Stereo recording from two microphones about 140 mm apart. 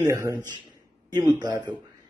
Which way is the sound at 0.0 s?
20° right (ahead or behind).